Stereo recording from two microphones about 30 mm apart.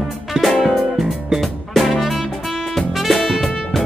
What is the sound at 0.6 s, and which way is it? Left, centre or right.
Music, centre.